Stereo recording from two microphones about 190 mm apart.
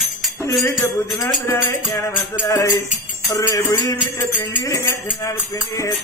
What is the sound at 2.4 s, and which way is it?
Speech, 15° left (ahead or behind).